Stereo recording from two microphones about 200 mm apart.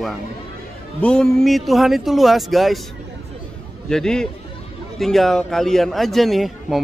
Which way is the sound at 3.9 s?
5° left (ahead or behind).